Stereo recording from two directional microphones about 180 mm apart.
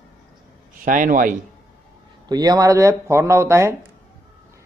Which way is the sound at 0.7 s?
50° right (ahead or behind).